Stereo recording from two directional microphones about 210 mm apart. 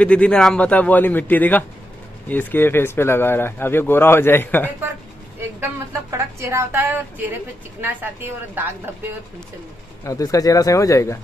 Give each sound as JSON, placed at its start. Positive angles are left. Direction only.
{"t": 0.0, "sound": "a man's voice", "side_deg": 5}
{"t": 5.6, "sound": "a woman's voice", "side_deg": -15}
{"t": 10.0, "sound": "a man's voice", "side_deg": 15}